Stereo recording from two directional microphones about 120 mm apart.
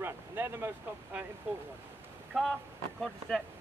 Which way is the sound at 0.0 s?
20° right (ahead or behind).